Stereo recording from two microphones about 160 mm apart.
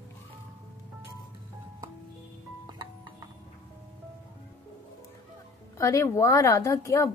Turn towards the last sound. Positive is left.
turn(degrees=20)  # may be behind; listen again after turning